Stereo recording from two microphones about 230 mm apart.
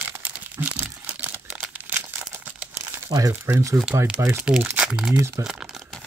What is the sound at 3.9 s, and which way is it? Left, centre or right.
Speech, centre.